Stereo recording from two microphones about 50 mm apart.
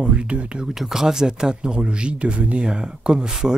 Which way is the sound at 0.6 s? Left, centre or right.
Centre.